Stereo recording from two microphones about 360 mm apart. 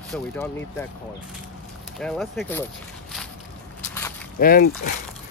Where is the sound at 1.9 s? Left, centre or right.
Centre.